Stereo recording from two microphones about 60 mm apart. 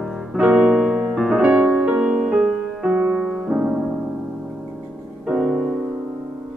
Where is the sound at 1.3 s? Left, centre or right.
Centre.